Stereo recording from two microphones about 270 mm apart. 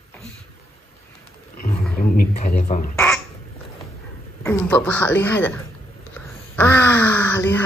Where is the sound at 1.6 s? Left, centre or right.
Left.